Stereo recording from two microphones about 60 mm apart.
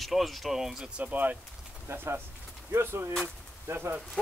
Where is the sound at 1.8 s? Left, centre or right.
Right.